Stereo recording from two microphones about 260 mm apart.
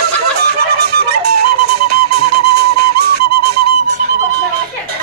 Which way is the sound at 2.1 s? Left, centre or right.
Right.